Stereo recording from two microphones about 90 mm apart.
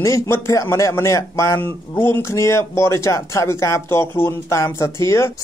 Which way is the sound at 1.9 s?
25° left (ahead or behind).